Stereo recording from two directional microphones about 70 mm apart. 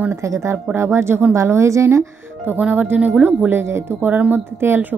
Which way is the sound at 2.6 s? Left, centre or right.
Right.